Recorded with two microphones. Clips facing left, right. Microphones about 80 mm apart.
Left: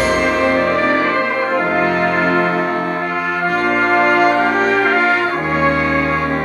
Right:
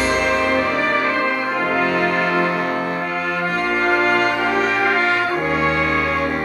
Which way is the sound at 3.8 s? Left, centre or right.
Centre.